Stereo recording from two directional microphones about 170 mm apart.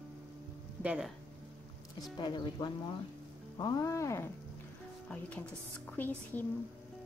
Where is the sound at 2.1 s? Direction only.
25° left (ahead or behind).